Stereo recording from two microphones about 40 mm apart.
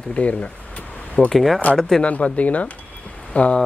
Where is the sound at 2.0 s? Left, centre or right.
Left.